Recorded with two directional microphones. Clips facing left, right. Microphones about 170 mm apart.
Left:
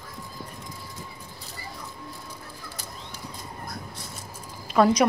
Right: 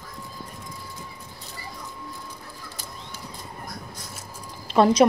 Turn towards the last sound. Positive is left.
turn(degrees=-25)  # may be behind; listen again after turning